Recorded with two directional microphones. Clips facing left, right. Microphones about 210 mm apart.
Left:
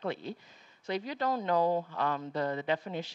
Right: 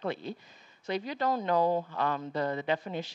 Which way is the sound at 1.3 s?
20° right (ahead or behind).